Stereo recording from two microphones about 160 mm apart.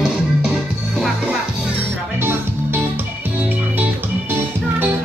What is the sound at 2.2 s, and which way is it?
Music, 15° right (ahead or behind).